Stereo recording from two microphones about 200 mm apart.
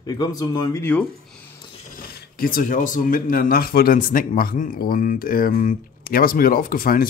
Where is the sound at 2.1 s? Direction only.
50° left (ahead or behind).